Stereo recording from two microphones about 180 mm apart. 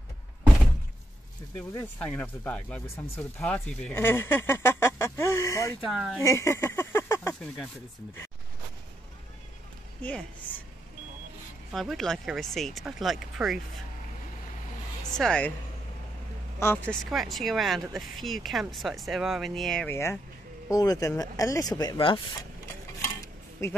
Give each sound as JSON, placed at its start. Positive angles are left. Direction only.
{"t": 1.7, "sound": "speech", "side_deg": 10}
{"t": 5.8, "sound": "speech", "side_deg": 0}
{"t": 6.1, "sound": "speech", "side_deg": 15}
{"t": 10.0, "sound": "speech", "side_deg": 5}
{"t": 11.7, "sound": "speech", "side_deg": 0}
{"t": 15.1, "sound": "speech", "side_deg": 5}
{"t": 16.5, "sound": "speech", "side_deg": 15}
{"t": 17.0, "sound": "speech", "side_deg": 0}
{"t": 20.7, "sound": "speech", "side_deg": 20}
{"t": 23.6, "sound": "speech", "side_deg": 15}